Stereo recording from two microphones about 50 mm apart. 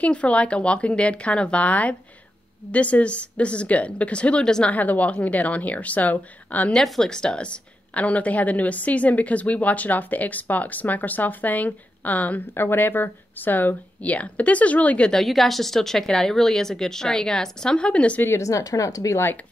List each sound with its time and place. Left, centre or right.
0.0 s speech: left
4.6 s a woman's voice: left
6.8 s a woman's voice: centre; by 12.4 s left
12.5 s a woman's voice: left
15.2 s a woman's voice: centre; by 18.2 s left
18.3 s speech: left